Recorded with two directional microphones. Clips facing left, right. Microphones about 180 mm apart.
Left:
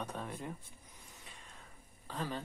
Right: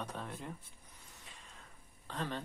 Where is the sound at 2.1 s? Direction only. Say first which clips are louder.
Even; 5° left (ahead or behind).